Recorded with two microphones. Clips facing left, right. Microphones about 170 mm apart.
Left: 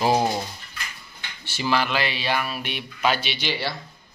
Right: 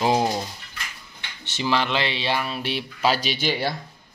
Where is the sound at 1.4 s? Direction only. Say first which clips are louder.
Even; 20° right (ahead or behind); by 3.8 s 45° right (ahead or behind).